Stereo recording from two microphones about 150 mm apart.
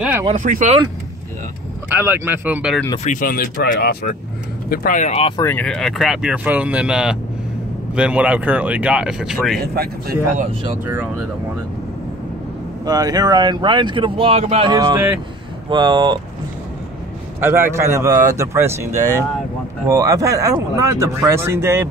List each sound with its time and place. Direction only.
0.4 s speech: 55° right (ahead or behind)
1.9 s speech: 15° right (ahead or behind)
3.0 s speech: 60° left (ahead or behind); by 4.2 s 80° left
4.6 s speech: 65° left (ahead or behind)
5.4 s speech: 10° left (ahead or behind)
9.6 s speech: 90° right
10.9 s speech: 10° right (ahead or behind)
12.8 s speech: 25° right (ahead or behind)
14.7 s speech: 30° right (ahead or behind)
17.4 s speech: 15° right (ahead or behind)